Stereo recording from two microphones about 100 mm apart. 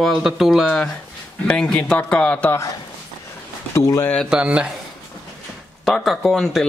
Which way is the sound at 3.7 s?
30° left (ahead or behind).